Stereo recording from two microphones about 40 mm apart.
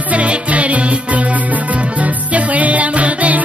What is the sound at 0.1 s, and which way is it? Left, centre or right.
Music, right.